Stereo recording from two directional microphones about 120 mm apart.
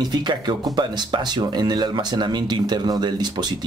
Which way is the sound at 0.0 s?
35° right (ahead or behind).